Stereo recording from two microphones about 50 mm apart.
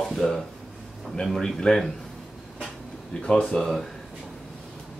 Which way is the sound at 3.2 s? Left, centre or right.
Centre.